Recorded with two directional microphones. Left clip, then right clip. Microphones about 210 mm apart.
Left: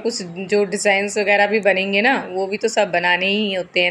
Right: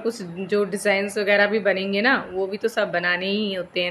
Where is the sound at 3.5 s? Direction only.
5° left (ahead or behind).